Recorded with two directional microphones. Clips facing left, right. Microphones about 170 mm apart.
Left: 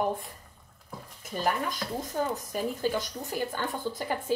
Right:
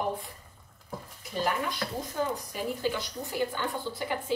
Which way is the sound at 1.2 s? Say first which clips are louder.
Left 1 dB; 45° left (ahead or behind).